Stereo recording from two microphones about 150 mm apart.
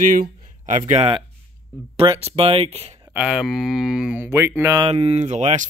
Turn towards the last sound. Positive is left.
turn(degrees=-50)  # may be behind; listen again after turning